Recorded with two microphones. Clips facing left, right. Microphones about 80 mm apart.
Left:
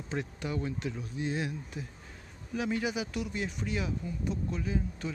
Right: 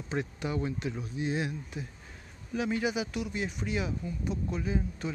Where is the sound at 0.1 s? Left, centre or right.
Centre.